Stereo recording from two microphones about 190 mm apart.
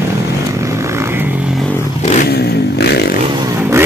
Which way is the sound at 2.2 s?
60° left (ahead or behind).